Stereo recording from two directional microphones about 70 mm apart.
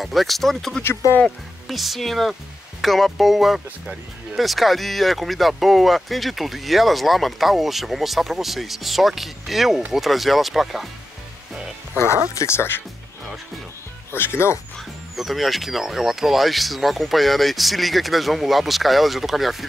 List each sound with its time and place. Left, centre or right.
0.0 s speech: centre
12.4 s speech: left
14.1 s speech: left
15.1 s speech: centre